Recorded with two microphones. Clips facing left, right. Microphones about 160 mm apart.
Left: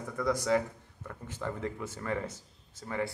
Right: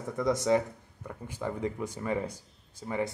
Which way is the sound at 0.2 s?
20° right (ahead or behind).